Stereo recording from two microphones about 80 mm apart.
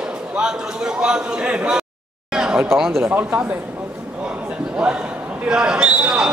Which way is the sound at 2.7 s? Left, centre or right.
Centre.